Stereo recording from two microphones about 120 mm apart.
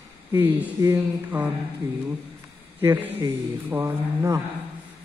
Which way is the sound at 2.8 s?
15° right (ahead or behind).